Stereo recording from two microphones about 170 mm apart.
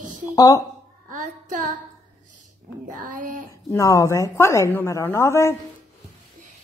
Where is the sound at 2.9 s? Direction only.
50° right (ahead or behind).